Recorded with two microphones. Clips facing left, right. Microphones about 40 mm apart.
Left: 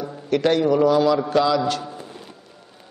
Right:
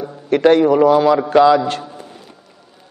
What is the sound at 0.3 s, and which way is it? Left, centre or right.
A man's voice, right.